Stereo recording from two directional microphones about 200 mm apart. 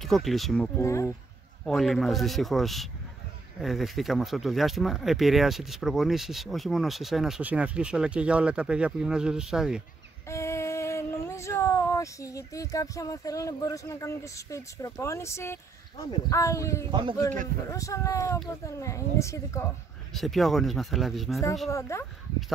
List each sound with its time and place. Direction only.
0.0 s speech: centre (ahead or behind)
0.7 s a child's voice: 15° left (ahead or behind)
1.7 s speech: centre (ahead or behind)
10.2 s a child's voice: 15° left (ahead or behind)
20.1 s speech: centre (ahead or behind)
21.6 s a child's voice: 15° left (ahead or behind)